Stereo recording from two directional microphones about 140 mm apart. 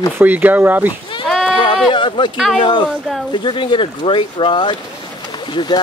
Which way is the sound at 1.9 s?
35° left (ahead or behind).